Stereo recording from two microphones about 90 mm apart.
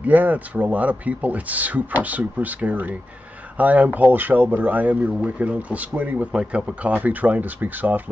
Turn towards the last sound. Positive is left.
turn(degrees=-20)  # may be behind; listen again after turning